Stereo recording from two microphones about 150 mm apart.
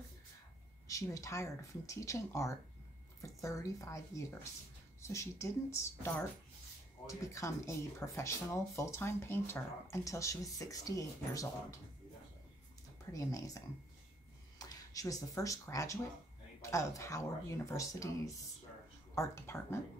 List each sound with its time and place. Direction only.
0.8 s speech: 20° left (ahead or behind)
13.1 s speech: 20° left (ahead or behind)